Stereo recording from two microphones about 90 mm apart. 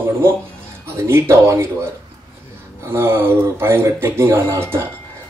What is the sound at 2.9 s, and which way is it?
Speech, 30° right (ahead or behind).